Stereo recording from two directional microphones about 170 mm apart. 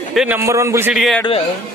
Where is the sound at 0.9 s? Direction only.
Centre (ahead or behind).